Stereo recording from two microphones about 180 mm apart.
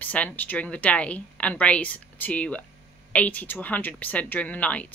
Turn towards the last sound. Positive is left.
turn(degrees=10)  # may be behind; listen again after turning